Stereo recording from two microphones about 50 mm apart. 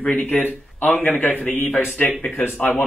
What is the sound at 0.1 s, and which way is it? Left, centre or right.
Speech, left.